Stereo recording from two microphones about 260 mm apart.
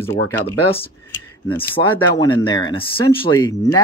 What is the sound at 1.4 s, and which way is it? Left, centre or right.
Speech, centre.